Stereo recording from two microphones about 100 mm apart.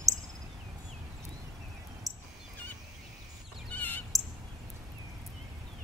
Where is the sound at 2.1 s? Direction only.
Centre (ahead or behind).